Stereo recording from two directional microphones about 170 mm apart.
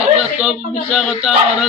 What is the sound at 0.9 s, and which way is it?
Speech, 5° right (ahead or behind).